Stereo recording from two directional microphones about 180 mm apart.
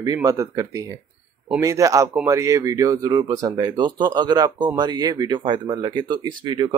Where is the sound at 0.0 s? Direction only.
20° right (ahead or behind).